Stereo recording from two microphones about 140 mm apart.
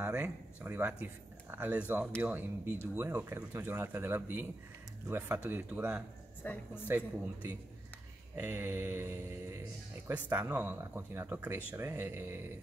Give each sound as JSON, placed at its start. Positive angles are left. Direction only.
{"t": 0.0, "sound": "speech", "side_deg": -10}
{"t": 6.4, "sound": "speech", "side_deg": 15}
{"t": 8.4, "sound": "speech", "side_deg": -15}